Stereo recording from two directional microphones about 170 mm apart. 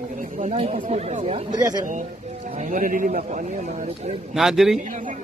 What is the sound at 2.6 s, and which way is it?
Speech, 50° right (ahead or behind).